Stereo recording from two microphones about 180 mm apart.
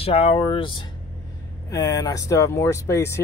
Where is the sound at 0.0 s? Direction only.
35° left (ahead or behind).